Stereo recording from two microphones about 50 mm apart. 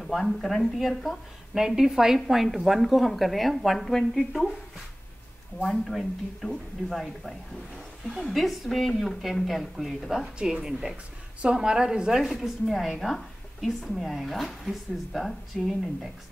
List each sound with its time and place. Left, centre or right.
0.0 s a woman's voice: centre
5.6 s a woman's voice: centre
10.4 s a woman's voice: centre